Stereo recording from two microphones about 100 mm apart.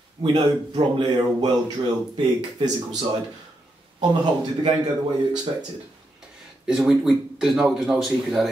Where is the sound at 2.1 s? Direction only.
40° right (ahead or behind).